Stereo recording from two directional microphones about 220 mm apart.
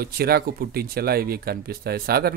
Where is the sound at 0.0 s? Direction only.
45° right (ahead or behind).